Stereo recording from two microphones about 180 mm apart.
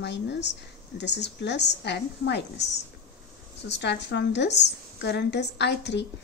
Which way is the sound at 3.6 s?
70° left (ahead or behind).